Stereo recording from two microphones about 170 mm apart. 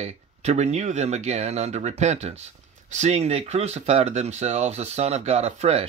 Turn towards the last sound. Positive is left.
turn(degrees=-40)  # may be behind; listen again after turning